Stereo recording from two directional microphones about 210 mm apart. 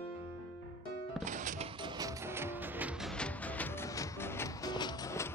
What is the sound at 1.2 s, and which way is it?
Music, 35° right (ahead or behind).